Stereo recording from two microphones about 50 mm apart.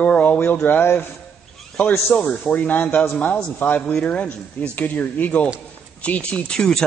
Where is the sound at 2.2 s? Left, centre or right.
Left.